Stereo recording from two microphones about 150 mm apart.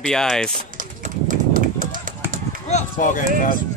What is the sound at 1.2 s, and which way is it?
Horse, 65° right (ahead or behind).